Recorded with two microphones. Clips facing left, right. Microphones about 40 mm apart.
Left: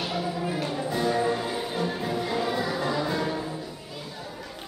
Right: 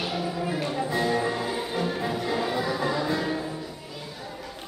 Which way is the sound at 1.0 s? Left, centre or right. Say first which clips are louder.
Left 1 dB; centre.